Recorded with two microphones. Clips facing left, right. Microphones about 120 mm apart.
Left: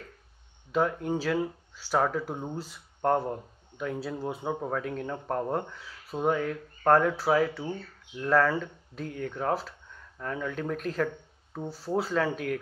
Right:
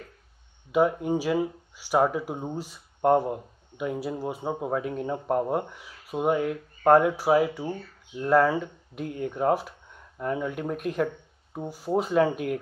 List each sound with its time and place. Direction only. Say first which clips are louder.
0.7 s speech: right 4 dB; 10° right (ahead or behind)